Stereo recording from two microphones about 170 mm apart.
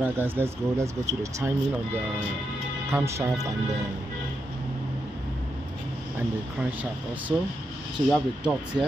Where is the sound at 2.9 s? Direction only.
15° right (ahead or behind).